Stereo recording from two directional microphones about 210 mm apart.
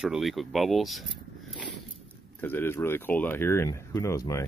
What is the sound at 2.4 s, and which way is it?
Speech, 10° left (ahead or behind).